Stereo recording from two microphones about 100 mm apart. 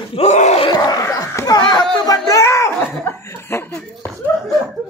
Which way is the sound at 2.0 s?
35° left (ahead or behind).